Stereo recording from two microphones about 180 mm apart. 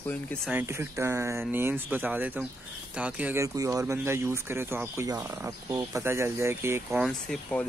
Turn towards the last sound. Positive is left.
turn(degrees=5)  # may be behind; listen again after turning